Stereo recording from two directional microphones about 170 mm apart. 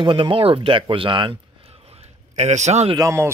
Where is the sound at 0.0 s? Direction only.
30° right (ahead or behind).